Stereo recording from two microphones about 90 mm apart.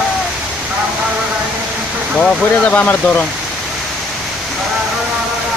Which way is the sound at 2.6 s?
20° left (ahead or behind).